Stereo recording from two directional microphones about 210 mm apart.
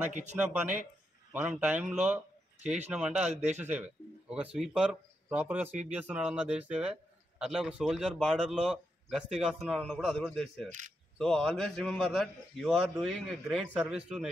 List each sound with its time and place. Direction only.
0.1 s speech: 35° right (ahead or behind)
0.4 s a man's voice: 5° right (ahead or behind)